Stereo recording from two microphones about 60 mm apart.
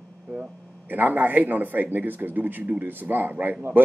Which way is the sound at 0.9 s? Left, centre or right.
Right.